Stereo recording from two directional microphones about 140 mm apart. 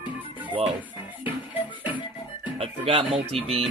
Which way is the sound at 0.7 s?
10° right (ahead or behind).